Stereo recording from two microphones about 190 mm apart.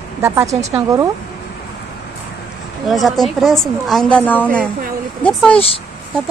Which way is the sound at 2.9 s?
Centre (ahead or behind).